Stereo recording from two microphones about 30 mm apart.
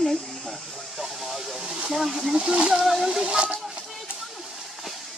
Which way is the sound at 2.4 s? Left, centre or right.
Right.